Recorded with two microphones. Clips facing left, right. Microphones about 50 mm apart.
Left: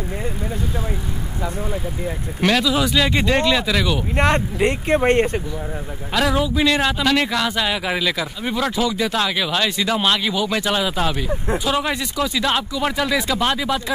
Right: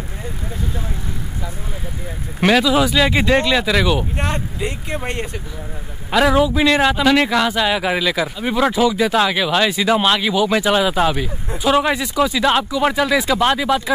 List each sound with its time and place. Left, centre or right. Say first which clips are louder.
2.4 s speech: right 4 dB; centre
4.2 s speech: left 5 dB; left
6.1 s speech: right 4 dB; centre